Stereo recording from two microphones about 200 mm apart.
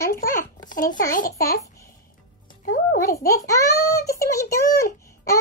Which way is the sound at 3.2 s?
15° left (ahead or behind).